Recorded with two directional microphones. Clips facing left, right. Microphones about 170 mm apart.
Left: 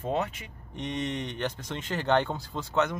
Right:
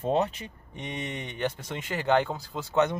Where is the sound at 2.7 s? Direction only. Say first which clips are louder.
Right 3 dB; 15° right (ahead or behind).